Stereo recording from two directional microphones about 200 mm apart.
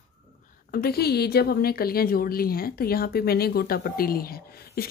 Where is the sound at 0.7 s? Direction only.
50° left (ahead or behind).